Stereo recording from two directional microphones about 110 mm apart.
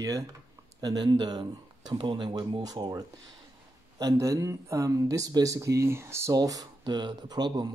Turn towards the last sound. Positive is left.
turn(degrees=-35)  # may be behind; listen again after turning